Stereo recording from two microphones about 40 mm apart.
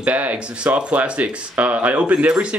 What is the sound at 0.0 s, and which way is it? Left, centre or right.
Speech, right.